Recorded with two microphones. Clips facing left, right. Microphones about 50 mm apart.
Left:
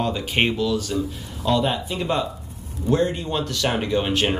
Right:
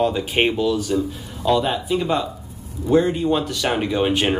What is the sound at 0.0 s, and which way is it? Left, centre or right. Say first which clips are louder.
Speech: right 3 dB; centre.